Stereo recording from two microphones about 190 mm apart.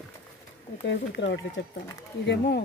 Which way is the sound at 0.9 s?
70° left (ahead or behind).